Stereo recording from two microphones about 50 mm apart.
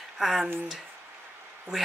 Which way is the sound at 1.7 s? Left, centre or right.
Centre.